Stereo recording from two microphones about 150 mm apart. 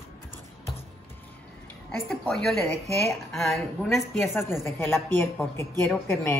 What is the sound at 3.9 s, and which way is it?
A woman's voice, 15° left (ahead or behind).